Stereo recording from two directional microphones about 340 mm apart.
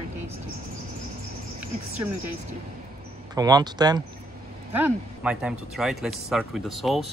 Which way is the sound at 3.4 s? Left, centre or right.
Centre.